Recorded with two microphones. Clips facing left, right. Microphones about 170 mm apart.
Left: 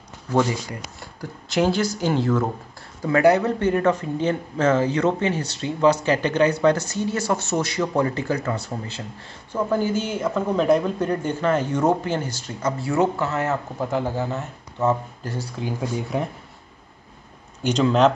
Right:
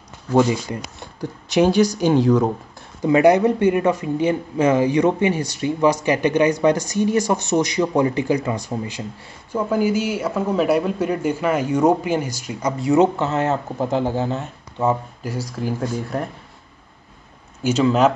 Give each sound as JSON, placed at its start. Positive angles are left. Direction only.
{"t": 0.3, "sound": "speech", "side_deg": -20}
{"t": 15.8, "sound": "speech", "side_deg": 0}
{"t": 17.6, "sound": "speech", "side_deg": -5}